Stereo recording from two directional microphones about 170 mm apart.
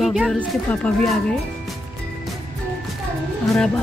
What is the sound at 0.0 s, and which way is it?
Speech, centre (ahead or behind).